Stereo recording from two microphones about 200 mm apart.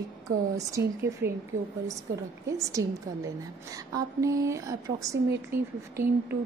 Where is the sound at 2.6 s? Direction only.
15° right (ahead or behind).